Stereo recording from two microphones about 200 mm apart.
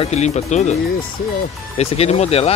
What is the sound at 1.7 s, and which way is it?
Speech, 30° left (ahead or behind).